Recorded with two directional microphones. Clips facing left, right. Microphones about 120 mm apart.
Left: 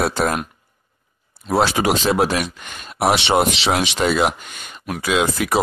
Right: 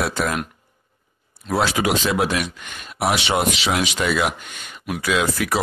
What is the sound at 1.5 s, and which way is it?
Speech, 30° left (ahead or behind).